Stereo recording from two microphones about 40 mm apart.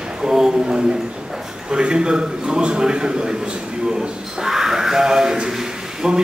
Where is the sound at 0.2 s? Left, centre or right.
Centre.